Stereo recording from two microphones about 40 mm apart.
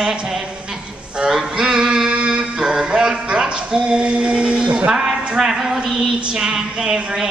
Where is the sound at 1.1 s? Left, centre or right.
Centre.